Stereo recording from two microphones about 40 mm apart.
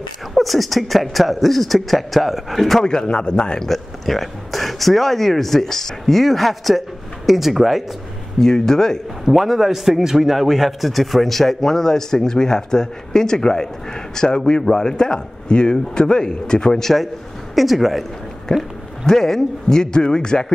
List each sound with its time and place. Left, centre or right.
0.3 s speech: centre
2.8 s a man's voice: centre
3.6 s speech: centre
8.4 s a man's voice: centre
9.2 s a man's voice: centre
17.6 s speech: centre
18.5 s a man's voice: centre